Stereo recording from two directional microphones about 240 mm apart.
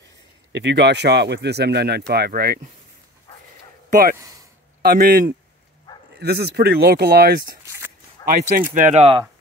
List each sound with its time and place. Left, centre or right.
0.5 s speech: right
3.9 s speech: right